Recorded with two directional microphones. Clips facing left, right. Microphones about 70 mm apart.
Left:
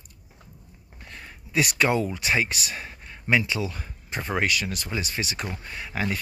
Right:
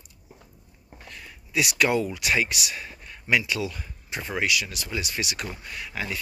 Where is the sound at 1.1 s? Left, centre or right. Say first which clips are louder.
Left 2 dB; left.